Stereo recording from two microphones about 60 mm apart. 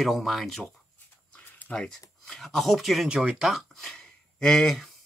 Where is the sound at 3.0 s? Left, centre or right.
Centre.